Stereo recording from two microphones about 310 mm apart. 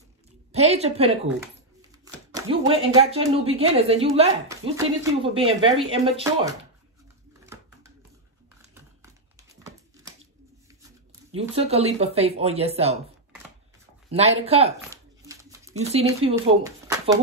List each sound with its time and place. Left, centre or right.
0.5 s a woman's voice: centre
2.7 s a woman's voice: centre
9.0 s crumpling: centre
11.3 s a woman's voice: centre
14.1 s a woman's voice: centre
14.8 s a sound: centre
15.7 s a woman's voice: right